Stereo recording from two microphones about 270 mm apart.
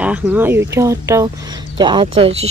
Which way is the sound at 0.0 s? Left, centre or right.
Centre.